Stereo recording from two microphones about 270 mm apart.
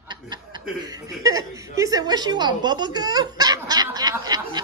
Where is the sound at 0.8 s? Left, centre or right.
Centre.